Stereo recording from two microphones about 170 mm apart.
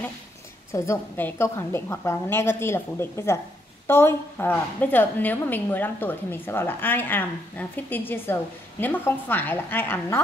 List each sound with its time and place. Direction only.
0.7 s a woman's voice: 15° left (ahead or behind)